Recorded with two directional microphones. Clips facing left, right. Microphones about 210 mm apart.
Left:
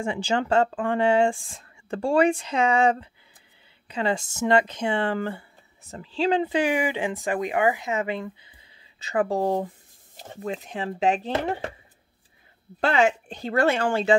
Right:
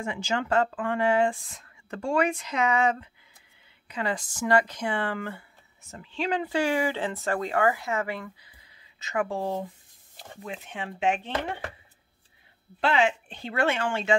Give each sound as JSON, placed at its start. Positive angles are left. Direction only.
{"t": 0.0, "sound": "speech", "side_deg": 30}
{"t": 9.0, "sound": "speech", "side_deg": 35}
{"t": 12.8, "sound": "speech", "side_deg": 45}